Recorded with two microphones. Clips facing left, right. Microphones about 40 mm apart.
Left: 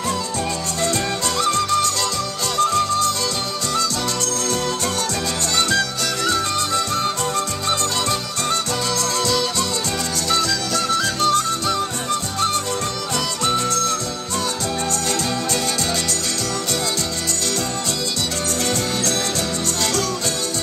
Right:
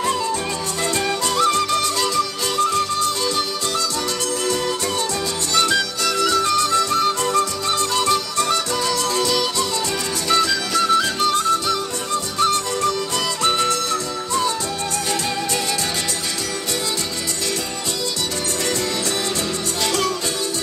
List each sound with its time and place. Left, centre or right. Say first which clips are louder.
0.8 s music: right 1 dB; right
5.5 s music: right 2 dB; right
6.9 s music: right 3 dB; right
9.0 s music: right 1 dB; centre
13.4 s music: right 1 dB; right